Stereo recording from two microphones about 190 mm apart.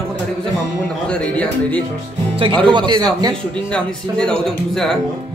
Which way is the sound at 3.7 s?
5° left (ahead or behind).